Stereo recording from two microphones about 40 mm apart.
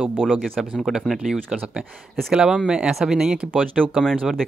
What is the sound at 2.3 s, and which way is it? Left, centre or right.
Speech, centre.